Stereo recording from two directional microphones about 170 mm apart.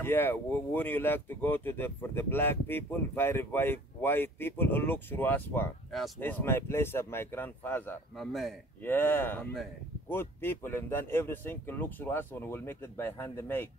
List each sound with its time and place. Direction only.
0.0 s speech: 10° left (ahead or behind)
5.9 s speech: centre (ahead or behind)
6.1 s speech: 10° left (ahead or behind)
8.2 s a man's voice: centre (ahead or behind)
8.8 s speech: 10° left (ahead or behind)